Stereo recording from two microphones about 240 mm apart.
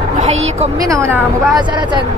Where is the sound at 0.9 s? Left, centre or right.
Centre.